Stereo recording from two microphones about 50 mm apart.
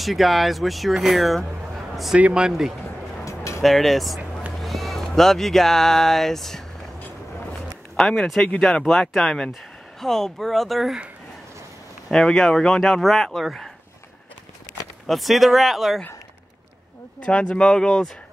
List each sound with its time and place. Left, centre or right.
0.0 s speech: centre
2.1 s speech: right
2.4 s speech: centre
3.3 s a sound: left
3.6 s speech: centre
7.9 s speech: centre
12.1 s speech: centre
15.0 s speech: centre
17.3 s speech: centre